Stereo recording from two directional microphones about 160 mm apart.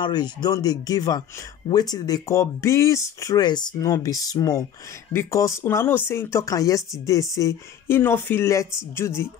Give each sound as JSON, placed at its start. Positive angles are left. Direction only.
{"t": 0.0, "sound": "speech", "side_deg": 25}